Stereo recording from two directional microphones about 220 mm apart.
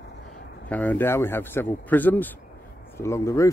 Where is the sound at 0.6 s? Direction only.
5° left (ahead or behind).